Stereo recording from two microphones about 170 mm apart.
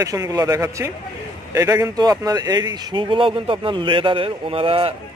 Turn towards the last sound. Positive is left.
turn(degrees=-30)  # may be behind; listen again after turning